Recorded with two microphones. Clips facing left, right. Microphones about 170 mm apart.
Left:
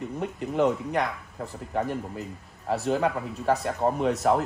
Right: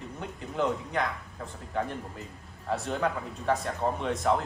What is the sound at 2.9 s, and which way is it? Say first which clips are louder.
Speech: left 7 dB; 35° left (ahead or behind).